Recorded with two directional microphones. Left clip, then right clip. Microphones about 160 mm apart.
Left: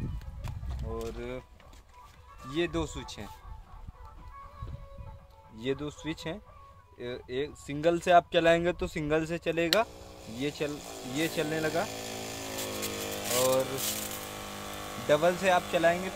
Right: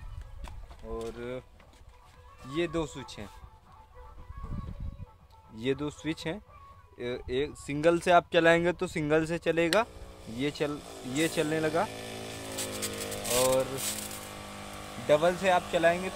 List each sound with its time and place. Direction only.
0.4 s horse: centre (ahead or behind)
2.5 s speech: 10° right (ahead or behind)
5.6 s speech: 45° right (ahead or behind)
10.8 s speech: 5° left (ahead or behind)
11.1 s speech: 45° right (ahead or behind)
11.9 s vehicle: 5° left (ahead or behind)
13.4 s speech: 5° right (ahead or behind)
13.9 s a sound: 50° left (ahead or behind)
15.0 s speech: 5° left (ahead or behind)
15.7 s speech: 10° right (ahead or behind)